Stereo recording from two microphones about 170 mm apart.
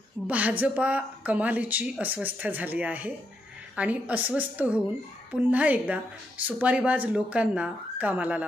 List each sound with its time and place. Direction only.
0.3 s speech: 10° right (ahead or behind)